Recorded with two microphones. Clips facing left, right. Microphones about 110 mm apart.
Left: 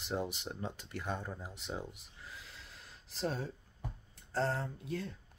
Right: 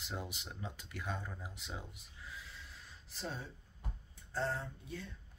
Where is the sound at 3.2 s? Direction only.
70° left (ahead or behind).